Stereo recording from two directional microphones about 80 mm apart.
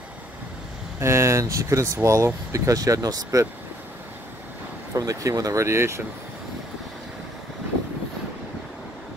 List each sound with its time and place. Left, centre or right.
0.9 s speech: right
4.9 s speech: right